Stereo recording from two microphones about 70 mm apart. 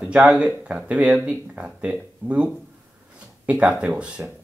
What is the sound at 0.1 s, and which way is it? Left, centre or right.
Speech, centre.